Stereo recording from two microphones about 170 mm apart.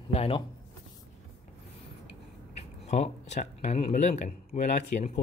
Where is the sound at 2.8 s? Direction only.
40° left (ahead or behind).